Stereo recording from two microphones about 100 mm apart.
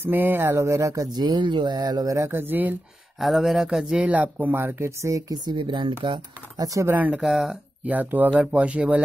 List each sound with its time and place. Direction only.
0.0 s speech: 20° right (ahead or behind)
3.2 s speech: centre (ahead or behind); by 5.4 s 30° right (ahead or behind)
5.4 s speech: 50° right (ahead or behind)
6.6 s speech: 35° right (ahead or behind)
6.9 s speech: 15° right (ahead or behind)
7.2 s speech: 5° right (ahead or behind)
7.8 s speech: 15° right (ahead or behind)